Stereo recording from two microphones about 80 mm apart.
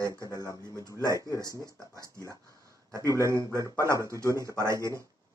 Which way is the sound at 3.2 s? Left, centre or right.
Right.